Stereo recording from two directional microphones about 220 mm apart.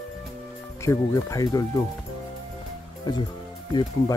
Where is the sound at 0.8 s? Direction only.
15° left (ahead or behind).